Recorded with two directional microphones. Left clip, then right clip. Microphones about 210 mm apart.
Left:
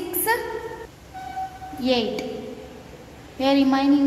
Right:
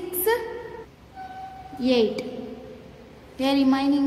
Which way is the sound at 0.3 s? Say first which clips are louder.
Even; 20° right (ahead or behind).